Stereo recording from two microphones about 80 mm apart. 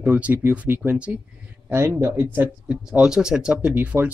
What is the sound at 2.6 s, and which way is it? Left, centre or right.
Speech, centre.